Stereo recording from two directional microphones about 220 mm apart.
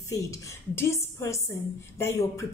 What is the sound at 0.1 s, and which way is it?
A woman's voice, 15° left (ahead or behind).